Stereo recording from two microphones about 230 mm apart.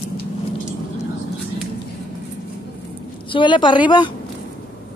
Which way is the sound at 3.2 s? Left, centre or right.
Left.